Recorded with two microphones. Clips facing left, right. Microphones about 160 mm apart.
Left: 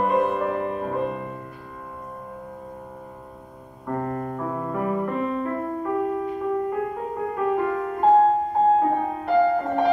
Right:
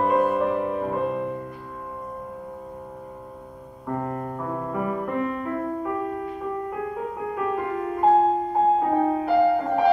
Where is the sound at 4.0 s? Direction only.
15° right (ahead or behind).